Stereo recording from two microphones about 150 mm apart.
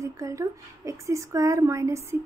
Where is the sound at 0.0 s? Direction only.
20° right (ahead or behind).